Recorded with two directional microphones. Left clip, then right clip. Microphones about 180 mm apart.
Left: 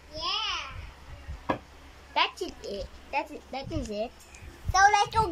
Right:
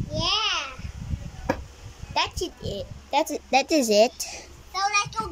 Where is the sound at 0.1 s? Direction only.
80° right.